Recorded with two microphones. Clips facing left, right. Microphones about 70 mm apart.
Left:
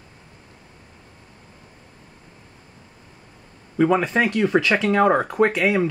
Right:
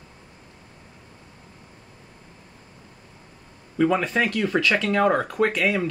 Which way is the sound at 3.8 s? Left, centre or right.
Centre.